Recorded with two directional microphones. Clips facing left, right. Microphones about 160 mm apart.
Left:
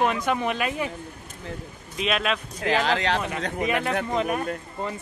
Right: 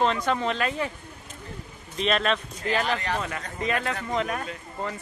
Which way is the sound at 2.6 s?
90° left.